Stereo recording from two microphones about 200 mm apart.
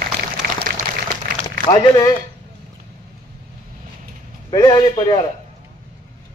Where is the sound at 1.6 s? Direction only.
20° left (ahead or behind).